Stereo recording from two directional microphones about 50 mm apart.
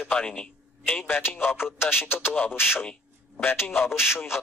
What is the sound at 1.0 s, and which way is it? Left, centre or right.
Speech, left.